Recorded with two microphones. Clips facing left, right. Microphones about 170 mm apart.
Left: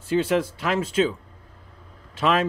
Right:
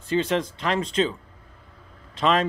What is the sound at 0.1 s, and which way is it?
Speech, 5° left (ahead or behind).